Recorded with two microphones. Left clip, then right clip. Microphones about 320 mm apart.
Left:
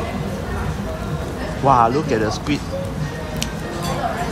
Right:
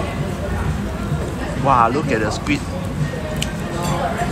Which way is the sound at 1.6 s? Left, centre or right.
Centre.